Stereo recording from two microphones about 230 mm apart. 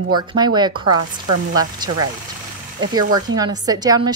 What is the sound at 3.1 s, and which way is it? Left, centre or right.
A woman's voice, centre.